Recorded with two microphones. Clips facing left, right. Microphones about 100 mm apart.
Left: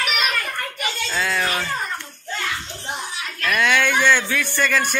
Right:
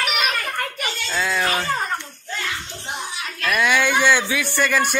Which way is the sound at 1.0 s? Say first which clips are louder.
Right 1 dB; centre (ahead or behind).